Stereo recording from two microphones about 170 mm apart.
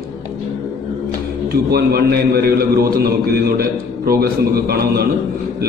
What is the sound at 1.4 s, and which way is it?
A man's voice, 65° right (ahead or behind).